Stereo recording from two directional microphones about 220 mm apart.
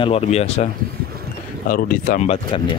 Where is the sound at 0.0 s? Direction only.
25° left (ahead or behind).